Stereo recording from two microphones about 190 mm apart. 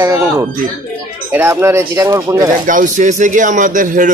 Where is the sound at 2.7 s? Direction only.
45° right (ahead or behind).